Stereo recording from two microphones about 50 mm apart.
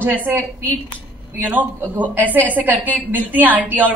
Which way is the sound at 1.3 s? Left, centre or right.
Right.